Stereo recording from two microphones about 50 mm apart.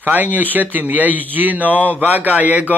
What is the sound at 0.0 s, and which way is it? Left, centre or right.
Speech, right.